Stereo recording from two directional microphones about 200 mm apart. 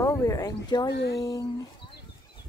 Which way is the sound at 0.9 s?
55° left (ahead or behind).